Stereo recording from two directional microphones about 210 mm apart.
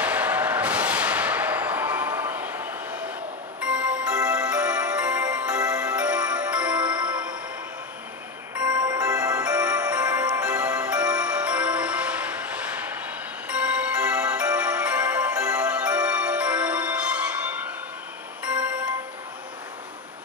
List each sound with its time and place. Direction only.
0.0 s a sound: 5° right (ahead or behind)
3.6 s music: 5° right (ahead or behind)
8.5 s music: 5° right (ahead or behind)